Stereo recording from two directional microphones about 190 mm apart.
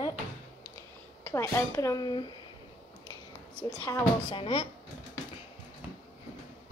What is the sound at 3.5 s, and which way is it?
Speech, 10° left (ahead or behind).